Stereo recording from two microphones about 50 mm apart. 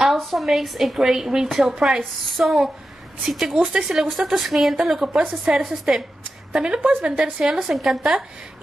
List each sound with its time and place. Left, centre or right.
0.0 s a woman's voice: centre
3.5 s speech: right
3.8 s a woman's voice: centre
6.8 s speech: right
7.1 s a woman's voice: right
7.4 s a woman's voice: centre